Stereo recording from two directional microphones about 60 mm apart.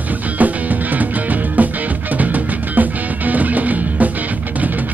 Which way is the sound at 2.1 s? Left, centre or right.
Right.